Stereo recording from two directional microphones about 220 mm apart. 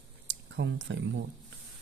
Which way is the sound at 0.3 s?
55° right (ahead or behind).